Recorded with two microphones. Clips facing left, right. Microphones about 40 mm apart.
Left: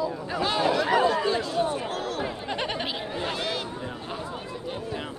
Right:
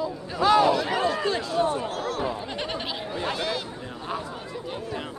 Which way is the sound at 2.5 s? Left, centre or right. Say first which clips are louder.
Left 1 dB; left.